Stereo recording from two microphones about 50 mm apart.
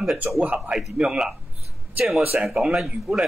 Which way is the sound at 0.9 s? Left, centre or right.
Centre.